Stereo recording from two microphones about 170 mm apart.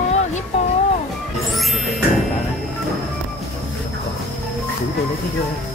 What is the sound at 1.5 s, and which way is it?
Music, centre (ahead or behind).